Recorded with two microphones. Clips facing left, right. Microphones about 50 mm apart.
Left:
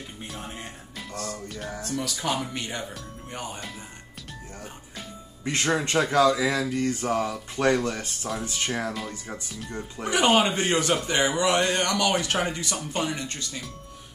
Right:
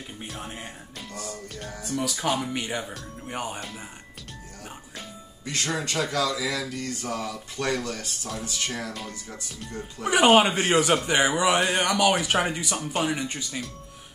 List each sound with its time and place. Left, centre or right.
0.4 s music: centre
2.5 s speech: centre
5.4 s speech: left
10.0 s speech: centre